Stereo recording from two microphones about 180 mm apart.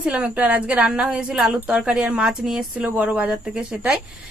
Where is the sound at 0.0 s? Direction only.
10° right (ahead or behind).